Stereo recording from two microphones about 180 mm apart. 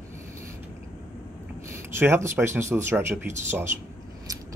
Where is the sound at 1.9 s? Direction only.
15° right (ahead or behind).